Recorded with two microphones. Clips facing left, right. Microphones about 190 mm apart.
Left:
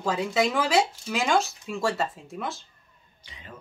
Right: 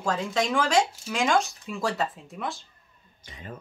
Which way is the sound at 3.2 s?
45° right (ahead or behind).